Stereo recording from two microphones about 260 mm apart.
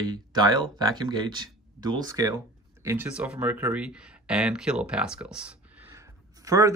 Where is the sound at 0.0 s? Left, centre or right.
Centre.